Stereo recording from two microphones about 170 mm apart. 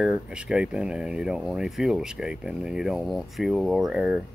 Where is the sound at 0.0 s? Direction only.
5° right (ahead or behind).